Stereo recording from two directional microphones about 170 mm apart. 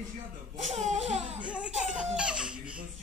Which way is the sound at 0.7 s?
40° right (ahead or behind).